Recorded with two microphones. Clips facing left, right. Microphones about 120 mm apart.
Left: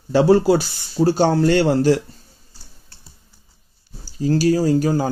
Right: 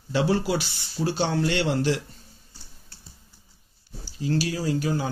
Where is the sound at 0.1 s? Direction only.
40° left (ahead or behind).